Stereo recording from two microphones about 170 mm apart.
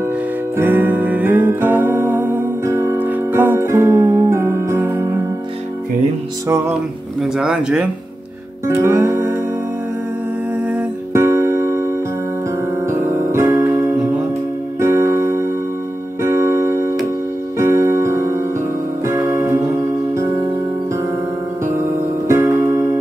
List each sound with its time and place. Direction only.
0.6 s music: 10° right (ahead or behind)
6.4 s music: 15° right (ahead or behind)
7.2 s speech: 5° right (ahead or behind)
8.6 s music: 15° right (ahead or behind)
10.6 s music: 10° right (ahead or behind)
22.3 s music: 15° right (ahead or behind)